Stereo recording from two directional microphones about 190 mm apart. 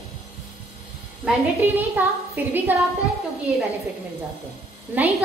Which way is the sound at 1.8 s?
10° right (ahead or behind).